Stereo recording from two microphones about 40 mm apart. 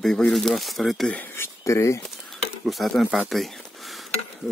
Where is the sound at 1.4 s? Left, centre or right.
Left.